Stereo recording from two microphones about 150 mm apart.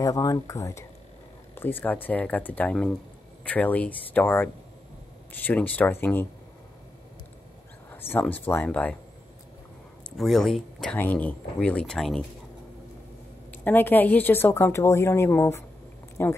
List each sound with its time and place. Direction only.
0.0 s a woman's voice: 25° left (ahead or behind)
7.9 s a woman's voice: 15° left (ahead or behind)
10.1 s a woman's voice: centre (ahead or behind)
13.5 s a woman's voice: 10° left (ahead or behind)